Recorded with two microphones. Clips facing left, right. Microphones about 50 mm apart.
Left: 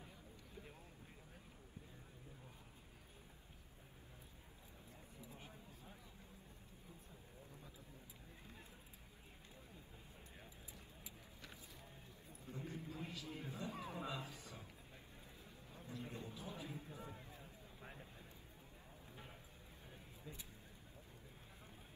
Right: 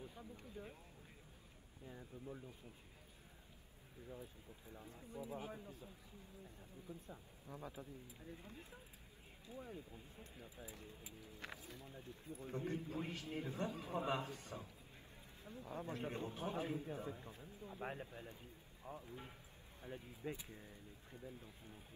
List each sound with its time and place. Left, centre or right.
4.7 s speech: right
5.5 s speech: right
7.1 s speech: right
11.4 s speech: right
13.7 s a man's voice: left
13.9 s a man's voice: right
19.8 s speech: right